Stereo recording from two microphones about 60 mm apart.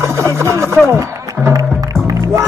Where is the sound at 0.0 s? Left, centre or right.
Right.